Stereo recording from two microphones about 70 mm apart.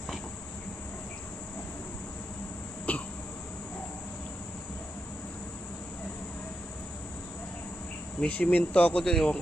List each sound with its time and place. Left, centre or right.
2.9 s a sound: left
8.2 s speech: left
9.1 s a man's voice: centre